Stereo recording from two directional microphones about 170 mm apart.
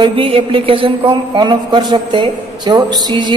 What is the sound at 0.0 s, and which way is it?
A woman's voice, 30° right (ahead or behind).